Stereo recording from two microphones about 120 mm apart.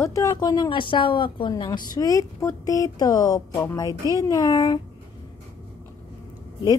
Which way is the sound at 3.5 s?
20° left (ahead or behind).